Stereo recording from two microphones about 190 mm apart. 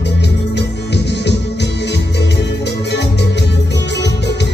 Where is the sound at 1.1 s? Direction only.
65° left (ahead or behind).